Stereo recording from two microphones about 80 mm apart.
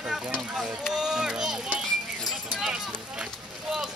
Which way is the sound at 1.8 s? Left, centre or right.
Centre.